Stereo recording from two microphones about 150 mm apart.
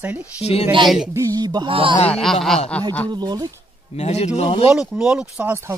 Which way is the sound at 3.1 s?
25° right (ahead or behind).